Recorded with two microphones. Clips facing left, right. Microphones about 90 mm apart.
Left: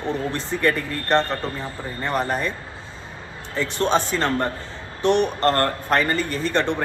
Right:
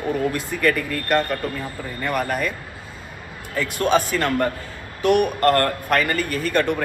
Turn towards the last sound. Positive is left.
turn(degrees=25)  # may be behind; listen again after turning